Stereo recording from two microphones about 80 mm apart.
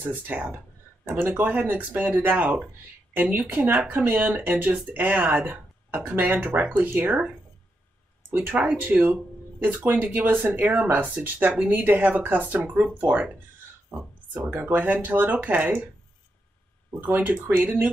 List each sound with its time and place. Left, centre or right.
0.0 s speech: right
8.3 s speech: right
14.3 s speech: right
17.0 s speech: right